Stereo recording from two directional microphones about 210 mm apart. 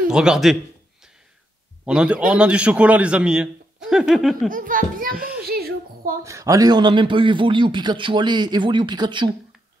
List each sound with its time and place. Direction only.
0.1 s a man's voice: 5° right (ahead or behind)
1.9 s a man's voice: 5° right (ahead or behind)
4.5 s a child's voice: 40° right (ahead or behind)
5.5 s a sound: 45° right (ahead or behind)
6.2 s a man's voice: 15° right (ahead or behind)